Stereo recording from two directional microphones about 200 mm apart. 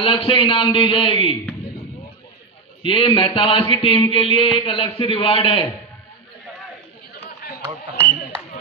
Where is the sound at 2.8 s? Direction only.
25° left (ahead or behind).